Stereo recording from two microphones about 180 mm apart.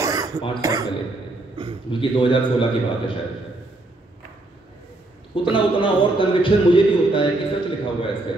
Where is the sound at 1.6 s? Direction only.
30° right (ahead or behind).